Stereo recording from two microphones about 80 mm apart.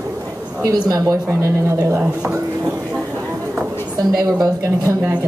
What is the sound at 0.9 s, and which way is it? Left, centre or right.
A woman's voice, right.